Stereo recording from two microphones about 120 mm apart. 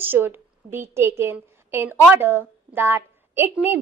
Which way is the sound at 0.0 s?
15° right (ahead or behind).